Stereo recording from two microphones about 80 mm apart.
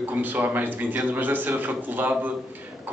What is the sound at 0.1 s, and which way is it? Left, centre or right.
A man's voice, right.